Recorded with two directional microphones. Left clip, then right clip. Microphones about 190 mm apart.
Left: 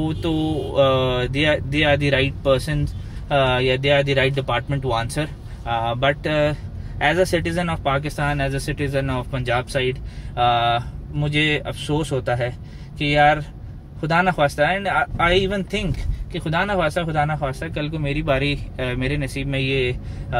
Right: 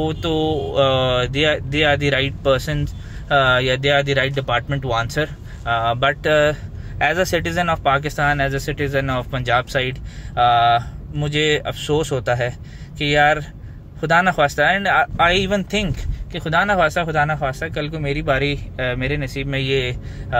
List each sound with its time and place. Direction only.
0.0 s speech: 20° right (ahead or behind)